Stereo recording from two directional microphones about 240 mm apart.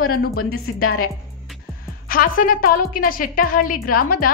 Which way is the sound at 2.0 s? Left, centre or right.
Left.